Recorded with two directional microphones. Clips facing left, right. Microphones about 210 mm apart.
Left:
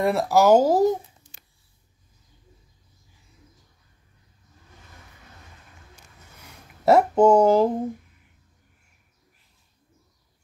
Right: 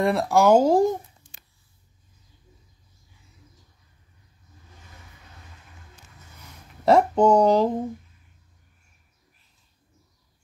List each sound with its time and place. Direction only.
0.0 s speech: 5° left (ahead or behind)
6.8 s speech: 5° left (ahead or behind)